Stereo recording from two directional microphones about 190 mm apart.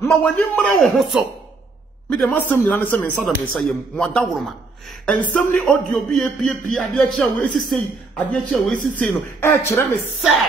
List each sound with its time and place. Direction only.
0.0 s speech: 10° left (ahead or behind)
8.7 s speech: 45° right (ahead or behind)
9.4 s speech: 10° left (ahead or behind)